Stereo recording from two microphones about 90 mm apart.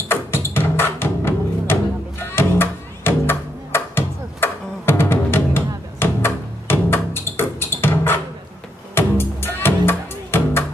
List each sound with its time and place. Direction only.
0.1 s music: 25° left (ahead or behind)